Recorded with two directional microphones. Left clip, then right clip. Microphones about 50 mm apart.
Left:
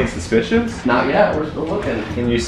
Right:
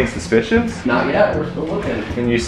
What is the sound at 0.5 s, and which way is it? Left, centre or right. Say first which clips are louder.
Speech: even; left.